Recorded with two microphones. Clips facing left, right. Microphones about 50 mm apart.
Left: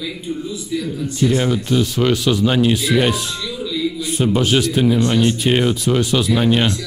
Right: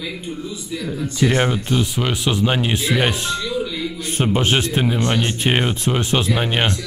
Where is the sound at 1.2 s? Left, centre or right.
Right.